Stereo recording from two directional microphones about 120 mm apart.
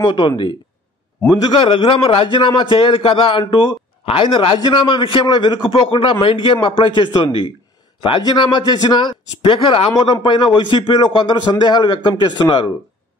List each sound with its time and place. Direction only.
0.0 s a man's voice: 35° left (ahead or behind)